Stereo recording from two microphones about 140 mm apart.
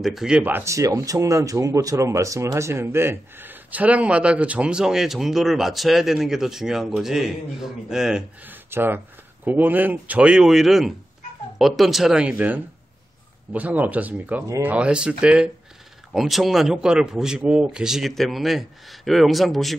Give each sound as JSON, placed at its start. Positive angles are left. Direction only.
{"t": 0.0, "sound": "speech", "side_deg": 0}
{"t": 8.6, "sound": "speech", "side_deg": -15}